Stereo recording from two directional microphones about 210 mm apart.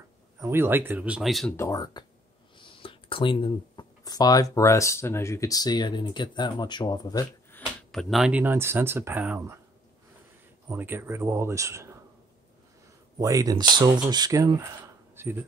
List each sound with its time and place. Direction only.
0.4 s speech: 10° right (ahead or behind)
1.6 s speech: 15° left (ahead or behind)
7.9 s speech: centre (ahead or behind)
10.7 s speech: 10° right (ahead or behind)
13.2 s speech: 15° right (ahead or behind)